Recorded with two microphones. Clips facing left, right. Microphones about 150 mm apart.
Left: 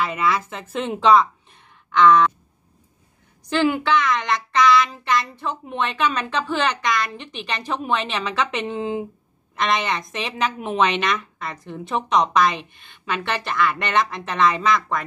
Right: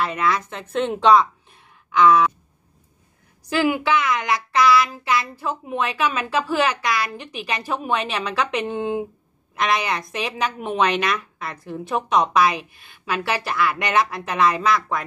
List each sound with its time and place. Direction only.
0.0 s a woman's voice: centre (ahead or behind)
3.4 s a woman's voice: 5° right (ahead or behind)